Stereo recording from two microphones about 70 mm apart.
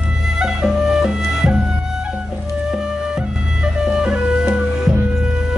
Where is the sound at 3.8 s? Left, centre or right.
Centre.